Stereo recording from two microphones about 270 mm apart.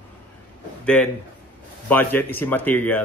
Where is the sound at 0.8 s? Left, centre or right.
Centre.